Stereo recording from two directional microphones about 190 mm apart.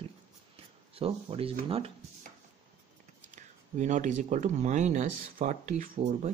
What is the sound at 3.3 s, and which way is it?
Speech, 40° right (ahead or behind).